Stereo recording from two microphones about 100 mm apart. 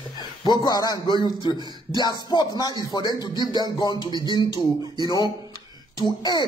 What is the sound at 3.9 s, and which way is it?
Speech, 45° right (ahead or behind).